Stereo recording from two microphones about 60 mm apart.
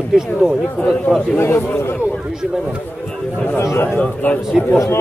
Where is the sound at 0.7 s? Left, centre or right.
Centre.